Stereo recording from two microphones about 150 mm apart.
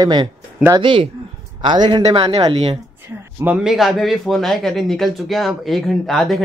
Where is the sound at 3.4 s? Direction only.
5° right (ahead or behind).